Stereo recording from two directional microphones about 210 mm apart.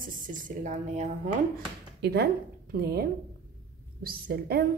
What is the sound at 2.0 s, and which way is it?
A woman's voice, 50° right (ahead or behind).